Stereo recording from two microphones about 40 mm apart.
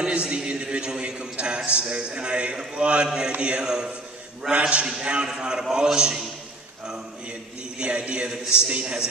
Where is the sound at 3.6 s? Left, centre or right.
Centre.